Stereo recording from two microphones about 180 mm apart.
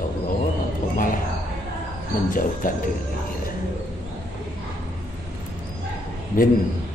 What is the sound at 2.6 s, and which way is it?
Speech, 50° left (ahead or behind).